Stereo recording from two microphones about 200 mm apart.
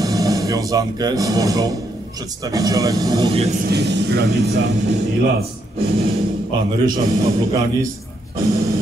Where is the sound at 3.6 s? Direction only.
60° right (ahead or behind).